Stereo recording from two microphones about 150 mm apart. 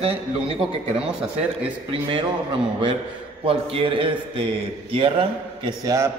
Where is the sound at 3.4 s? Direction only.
40° right (ahead or behind).